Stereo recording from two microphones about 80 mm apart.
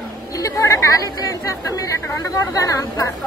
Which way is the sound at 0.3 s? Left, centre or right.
Left.